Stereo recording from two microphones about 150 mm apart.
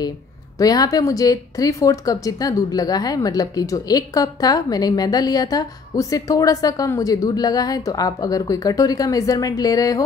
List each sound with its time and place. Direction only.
0.6 s speech: 25° left (ahead or behind)